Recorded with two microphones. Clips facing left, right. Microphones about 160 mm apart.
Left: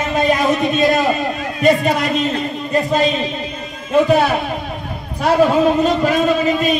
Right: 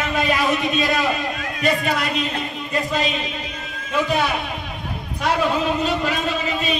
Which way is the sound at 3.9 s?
40° left (ahead or behind).